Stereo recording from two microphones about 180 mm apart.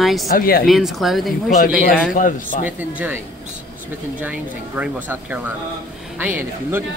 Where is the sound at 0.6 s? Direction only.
Centre (ahead or behind).